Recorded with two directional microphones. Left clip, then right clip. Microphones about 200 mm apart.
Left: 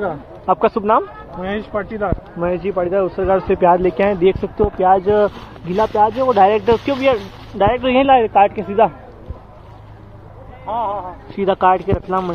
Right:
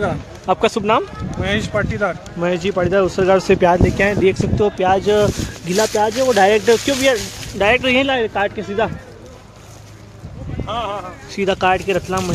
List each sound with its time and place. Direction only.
0.0 s speech: 25° right (ahead or behind)
2.4 s speech: 40° right (ahead or behind)
3.8 s speech: 15° right (ahead or behind)
7.9 s speech: 5° right (ahead or behind)
8.2 s speech: 10° left (ahead or behind)
11.3 s speech: 15° right (ahead or behind)